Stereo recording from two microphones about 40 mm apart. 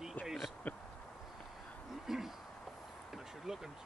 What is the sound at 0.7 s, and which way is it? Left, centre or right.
Speech, left.